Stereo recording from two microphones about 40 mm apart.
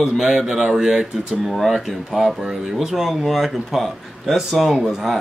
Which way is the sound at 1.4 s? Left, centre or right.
Centre.